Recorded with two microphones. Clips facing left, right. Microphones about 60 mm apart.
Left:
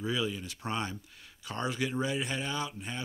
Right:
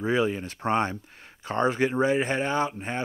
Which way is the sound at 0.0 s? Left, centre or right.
Right.